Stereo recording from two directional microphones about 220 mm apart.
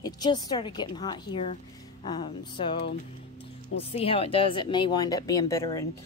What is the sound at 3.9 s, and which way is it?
Speech, 25° left (ahead or behind).